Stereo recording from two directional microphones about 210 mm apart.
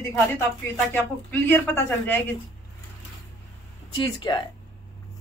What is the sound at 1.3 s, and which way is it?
A woman's voice, 10° left (ahead or behind).